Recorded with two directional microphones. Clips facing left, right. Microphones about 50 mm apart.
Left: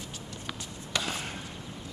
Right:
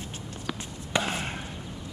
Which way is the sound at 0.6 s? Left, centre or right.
Right.